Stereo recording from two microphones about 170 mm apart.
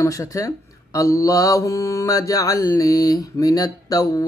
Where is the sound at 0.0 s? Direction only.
20° left (ahead or behind).